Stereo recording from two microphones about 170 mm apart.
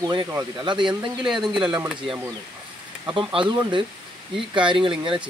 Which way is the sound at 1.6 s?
5° right (ahead or behind).